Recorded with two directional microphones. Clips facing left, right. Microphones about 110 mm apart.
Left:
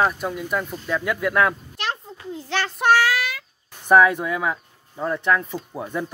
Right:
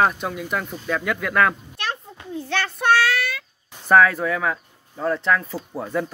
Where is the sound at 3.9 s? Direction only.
15° left (ahead or behind).